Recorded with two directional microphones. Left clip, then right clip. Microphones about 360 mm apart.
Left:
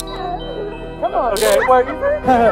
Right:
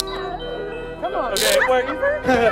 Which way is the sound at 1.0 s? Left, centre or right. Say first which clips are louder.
Left 5 dB; centre.